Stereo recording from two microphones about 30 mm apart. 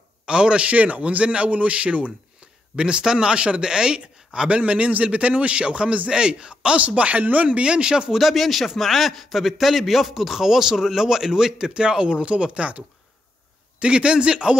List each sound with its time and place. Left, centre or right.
0.3 s speech: right
0.7 s speech: right
1.0 s a man's voice: right
2.7 s speech: right
4.5 s a man's voice: right
5.6 s speech: right
7.0 s speech: right
7.5 s speech: right
8.1 s a man's voice: centre; by 14.6 s right